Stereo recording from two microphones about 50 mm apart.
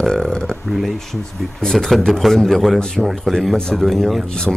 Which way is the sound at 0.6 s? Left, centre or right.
Centre.